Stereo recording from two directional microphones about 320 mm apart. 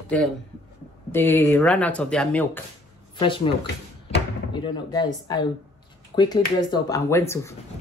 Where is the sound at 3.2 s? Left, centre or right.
Centre.